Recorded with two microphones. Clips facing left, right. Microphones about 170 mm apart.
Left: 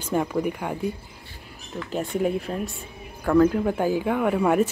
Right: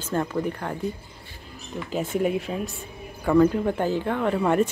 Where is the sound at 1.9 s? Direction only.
Centre (ahead or behind).